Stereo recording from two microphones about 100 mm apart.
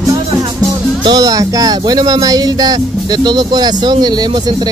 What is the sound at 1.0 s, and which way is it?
Speech, 40° right (ahead or behind).